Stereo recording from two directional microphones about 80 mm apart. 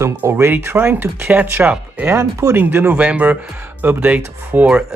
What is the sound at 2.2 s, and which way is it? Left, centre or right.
Speech, right.